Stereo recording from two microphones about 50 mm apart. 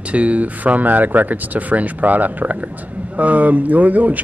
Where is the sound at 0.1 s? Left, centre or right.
Right.